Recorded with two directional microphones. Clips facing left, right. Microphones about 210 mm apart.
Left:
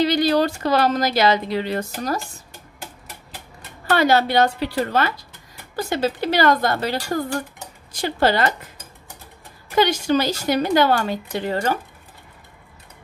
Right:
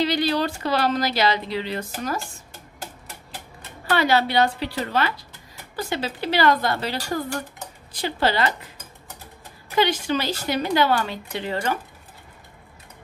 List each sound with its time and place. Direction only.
0.0 s speech: 45° left (ahead or behind)
3.9 s speech: 45° left (ahead or behind)
9.8 s speech: 40° left (ahead or behind)